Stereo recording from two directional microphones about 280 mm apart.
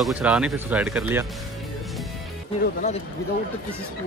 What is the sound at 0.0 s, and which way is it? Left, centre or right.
Speech, centre.